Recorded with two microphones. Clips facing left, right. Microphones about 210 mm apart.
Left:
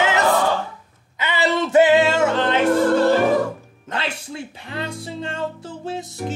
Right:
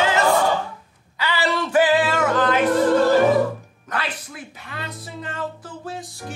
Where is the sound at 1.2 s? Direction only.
20° left (ahead or behind).